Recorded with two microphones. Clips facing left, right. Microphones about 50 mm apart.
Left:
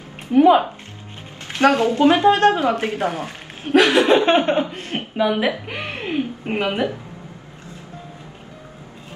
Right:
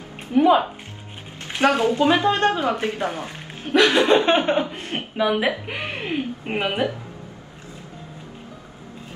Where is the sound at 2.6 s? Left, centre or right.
Centre.